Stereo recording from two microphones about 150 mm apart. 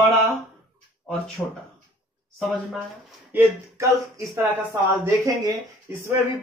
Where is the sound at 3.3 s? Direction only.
20° right (ahead or behind).